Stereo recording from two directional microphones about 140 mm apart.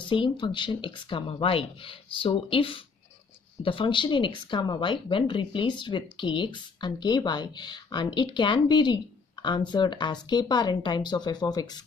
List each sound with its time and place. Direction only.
0.0 s speech: 35° left (ahead or behind)